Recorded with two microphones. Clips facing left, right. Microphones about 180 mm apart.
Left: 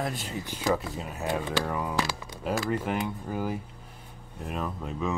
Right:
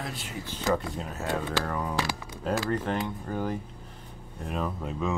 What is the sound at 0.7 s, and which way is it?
Speech, 5° left (ahead or behind).